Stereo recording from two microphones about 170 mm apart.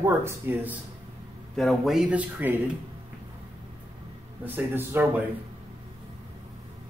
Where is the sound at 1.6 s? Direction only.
Centre (ahead or behind).